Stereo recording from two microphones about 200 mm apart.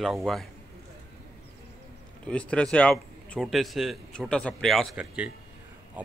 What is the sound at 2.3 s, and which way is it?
Speech, 5° left (ahead or behind).